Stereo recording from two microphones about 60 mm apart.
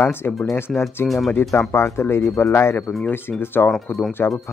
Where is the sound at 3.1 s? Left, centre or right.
Left.